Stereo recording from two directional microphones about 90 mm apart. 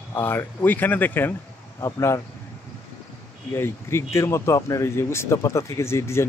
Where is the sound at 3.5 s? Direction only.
30° left (ahead or behind).